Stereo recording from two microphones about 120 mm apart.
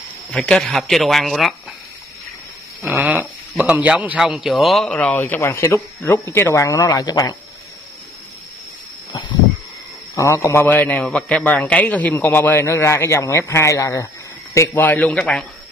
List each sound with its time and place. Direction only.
0.3 s speech: 5° left (ahead or behind)
2.8 s a man's voice: 15° right (ahead or behind); by 7.3 s 30° left (ahead or behind)
10.1 s a man's voice: 25° left (ahead or behind)
14.8 s a man's voice: 15° left (ahead or behind)